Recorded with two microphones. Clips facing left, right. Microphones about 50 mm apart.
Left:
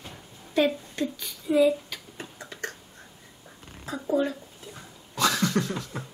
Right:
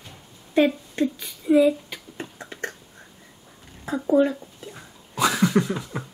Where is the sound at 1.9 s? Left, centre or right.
Right.